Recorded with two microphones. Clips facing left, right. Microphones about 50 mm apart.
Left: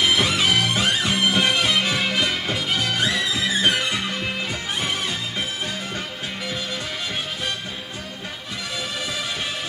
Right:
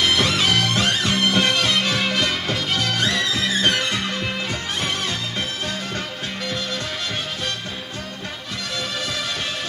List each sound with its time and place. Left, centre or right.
0.0 s music: centre
8.7 s music: centre